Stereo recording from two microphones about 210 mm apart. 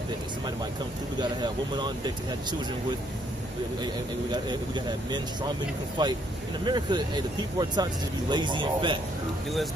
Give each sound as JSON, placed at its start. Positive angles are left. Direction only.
{"t": 1.2, "sound": "speech", "side_deg": -20}
{"t": 3.8, "sound": "speech", "side_deg": -20}